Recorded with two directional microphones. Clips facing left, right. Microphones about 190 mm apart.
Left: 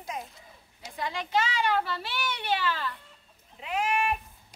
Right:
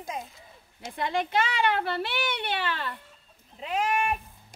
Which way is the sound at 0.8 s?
55° right (ahead or behind).